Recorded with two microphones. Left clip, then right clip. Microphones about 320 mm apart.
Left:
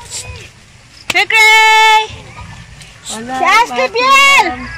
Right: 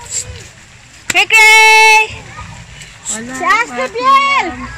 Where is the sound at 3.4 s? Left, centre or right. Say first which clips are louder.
Left 3 dB; left.